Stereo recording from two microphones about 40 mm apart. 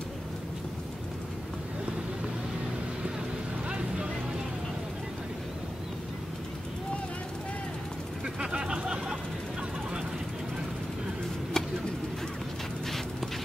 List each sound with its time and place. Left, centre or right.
3.6 s vehicle: right
8.4 s a sound: right
11.6 s bird: centre